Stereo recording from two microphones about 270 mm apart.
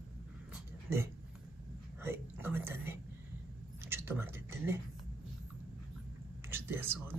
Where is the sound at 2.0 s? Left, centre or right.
Centre.